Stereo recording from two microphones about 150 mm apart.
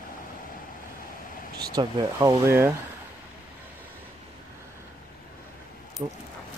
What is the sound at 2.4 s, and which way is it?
Speech, 15° right (ahead or behind).